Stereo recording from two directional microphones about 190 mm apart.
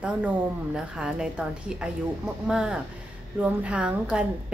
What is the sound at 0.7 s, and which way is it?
A woman's voice, 5° right (ahead or behind).